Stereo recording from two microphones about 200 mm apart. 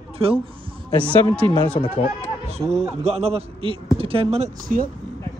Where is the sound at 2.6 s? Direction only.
15° right (ahead or behind).